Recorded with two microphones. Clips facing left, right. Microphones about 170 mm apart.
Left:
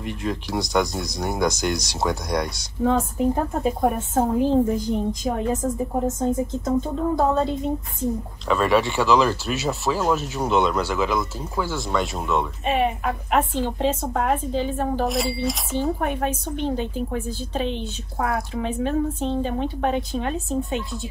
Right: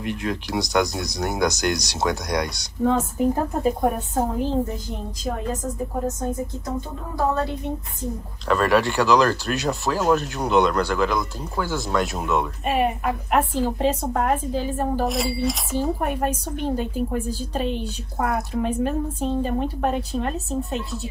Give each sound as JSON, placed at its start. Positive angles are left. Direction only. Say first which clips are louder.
{"t": 0.0, "sound": "speech", "louder": "right 1 dB", "side_deg": 0}
{"t": 4.7, "sound": "a woman's voice", "louder": "left 9 dB", "side_deg": 15}
{"t": 8.5, "sound": "speech", "louder": "even", "side_deg": 0}